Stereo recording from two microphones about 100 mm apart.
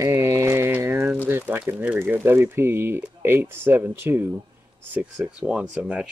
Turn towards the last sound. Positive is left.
turn(degrees=-10)  # may be behind; listen again after turning